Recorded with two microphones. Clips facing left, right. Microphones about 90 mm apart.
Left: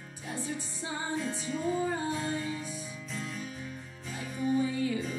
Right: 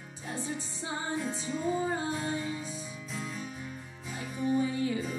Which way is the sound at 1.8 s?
25° right (ahead or behind).